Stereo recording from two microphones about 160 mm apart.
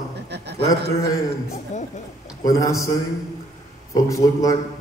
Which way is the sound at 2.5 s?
20° left (ahead or behind).